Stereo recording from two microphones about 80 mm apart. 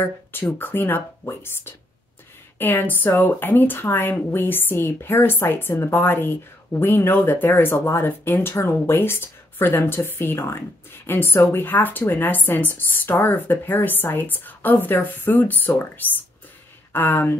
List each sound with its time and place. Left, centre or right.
0.0 s speech: left